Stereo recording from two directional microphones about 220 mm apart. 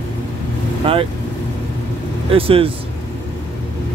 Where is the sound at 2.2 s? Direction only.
25° right (ahead or behind).